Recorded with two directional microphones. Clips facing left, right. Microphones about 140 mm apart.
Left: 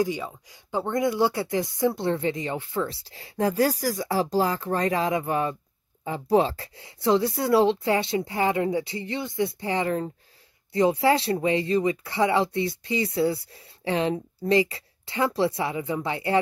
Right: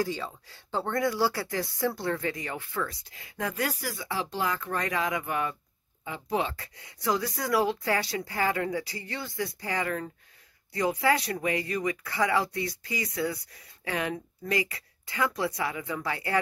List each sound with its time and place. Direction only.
0.0 s speech: 15° left (ahead or behind)